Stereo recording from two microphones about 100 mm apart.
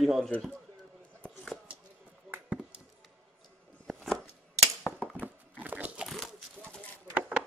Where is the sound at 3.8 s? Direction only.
Centre (ahead or behind).